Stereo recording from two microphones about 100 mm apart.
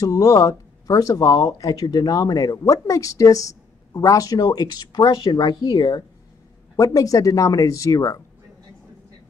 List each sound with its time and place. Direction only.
0.0 s speech: 35° left (ahead or behind)
6.8 s speech: 35° left (ahead or behind)